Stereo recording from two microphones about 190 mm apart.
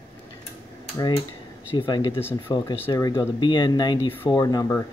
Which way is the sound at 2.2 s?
10° left (ahead or behind).